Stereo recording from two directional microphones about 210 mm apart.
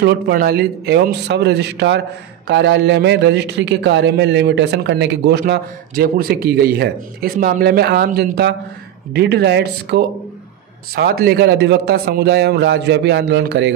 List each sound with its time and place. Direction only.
0.0 s speech: 50° right (ahead or behind)